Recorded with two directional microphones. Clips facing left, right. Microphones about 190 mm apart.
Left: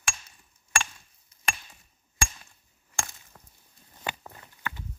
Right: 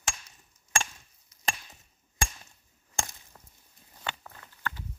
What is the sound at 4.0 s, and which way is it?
Walk, 15° left (ahead or behind).